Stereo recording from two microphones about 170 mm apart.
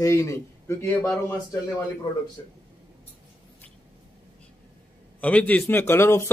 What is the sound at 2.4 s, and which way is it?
Speech, 20° left (ahead or behind).